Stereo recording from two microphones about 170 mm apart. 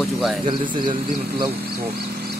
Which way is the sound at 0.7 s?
55° right (ahead or behind).